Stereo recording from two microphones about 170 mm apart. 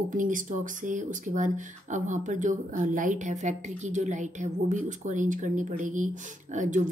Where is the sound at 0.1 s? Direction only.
50° right (ahead or behind).